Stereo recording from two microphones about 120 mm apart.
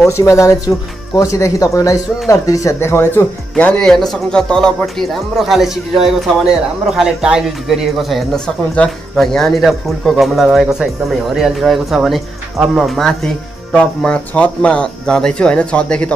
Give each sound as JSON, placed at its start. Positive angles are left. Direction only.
{"t": 0.0, "sound": "speech", "side_deg": 25}
{"t": 3.5, "sound": "speech", "side_deg": 10}